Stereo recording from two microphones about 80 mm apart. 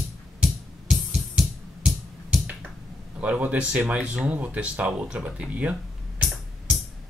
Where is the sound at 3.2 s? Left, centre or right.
Centre.